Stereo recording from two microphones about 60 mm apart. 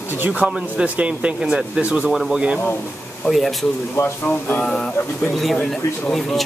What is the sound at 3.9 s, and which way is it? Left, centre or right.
Speech, left.